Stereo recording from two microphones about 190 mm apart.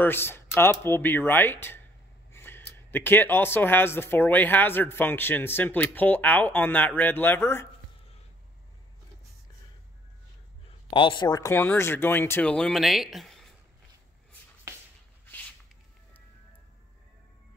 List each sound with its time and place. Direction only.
0.0 s speech: 10° left (ahead or behind)
10.9 s speech: 25° left (ahead or behind); by 13.6 s centre (ahead or behind)